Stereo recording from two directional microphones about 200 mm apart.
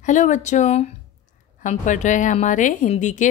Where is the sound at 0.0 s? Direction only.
40° left (ahead or behind).